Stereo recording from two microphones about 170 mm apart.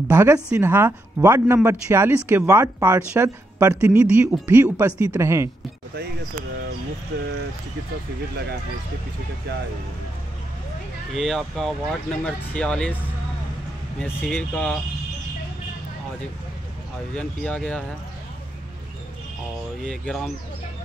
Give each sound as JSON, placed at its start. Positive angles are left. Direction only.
{"t": 0.1, "sound": "speech", "side_deg": -15}
{"t": 11.1, "sound": "speech", "side_deg": 0}
{"t": 17.1, "sound": "speech", "side_deg": 5}
{"t": 19.8, "sound": "speech", "side_deg": 5}